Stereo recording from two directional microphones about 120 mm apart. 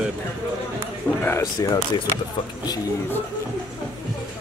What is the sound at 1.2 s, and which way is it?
Speech, 25° left (ahead or behind).